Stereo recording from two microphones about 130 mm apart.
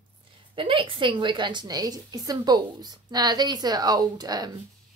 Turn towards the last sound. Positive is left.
turn(degrees=-30)  # may be behind; listen again after turning